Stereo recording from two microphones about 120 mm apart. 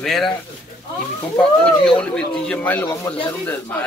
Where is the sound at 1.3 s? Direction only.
10° left (ahead or behind).